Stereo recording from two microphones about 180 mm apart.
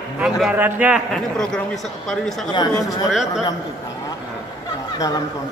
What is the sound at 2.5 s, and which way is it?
Speech, 20° left (ahead or behind).